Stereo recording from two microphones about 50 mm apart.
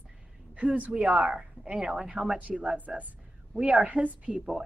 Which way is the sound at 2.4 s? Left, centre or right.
Right.